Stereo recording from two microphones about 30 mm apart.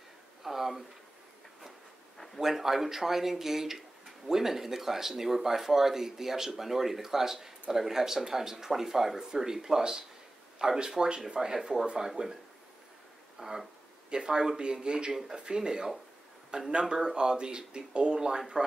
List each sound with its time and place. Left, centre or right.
0.4 s a sound: centre
2.4 s speech: centre
12.2 s speech: right
13.4 s speech: right